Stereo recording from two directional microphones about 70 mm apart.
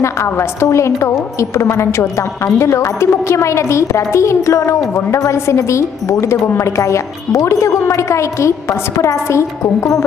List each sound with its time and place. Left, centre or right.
0.0 s a woman's voice: left